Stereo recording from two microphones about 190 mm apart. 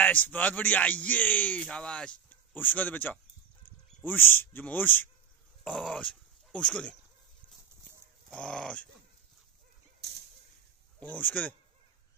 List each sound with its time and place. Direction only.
0.0 s a man's voice: 10° left (ahead or behind)
8.3 s dog: 5° left (ahead or behind)
9.9 s a sound: 60° right (ahead or behind)
11.0 s a man's voice: 10° left (ahead or behind)